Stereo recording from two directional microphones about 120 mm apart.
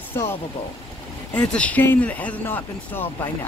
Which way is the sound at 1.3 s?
10° left (ahead or behind).